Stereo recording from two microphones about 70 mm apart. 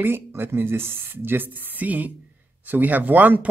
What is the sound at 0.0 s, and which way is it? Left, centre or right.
Speech, right.